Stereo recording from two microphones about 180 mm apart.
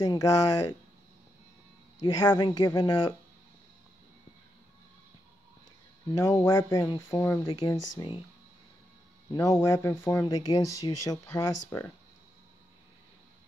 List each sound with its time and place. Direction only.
0.0 s speech: 20° left (ahead or behind)
2.0 s speech: 20° left (ahead or behind)
6.3 s speech: 20° left (ahead or behind)
9.3 s speech: 20° left (ahead or behind)